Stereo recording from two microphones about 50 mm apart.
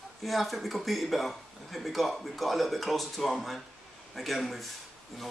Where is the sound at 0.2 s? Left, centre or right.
Centre.